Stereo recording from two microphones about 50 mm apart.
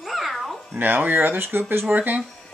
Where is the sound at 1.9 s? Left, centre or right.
Right.